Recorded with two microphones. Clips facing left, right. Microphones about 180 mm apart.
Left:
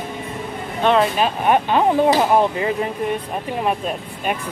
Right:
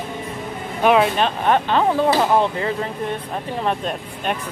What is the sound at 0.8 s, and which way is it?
Speech, 5° right (ahead or behind).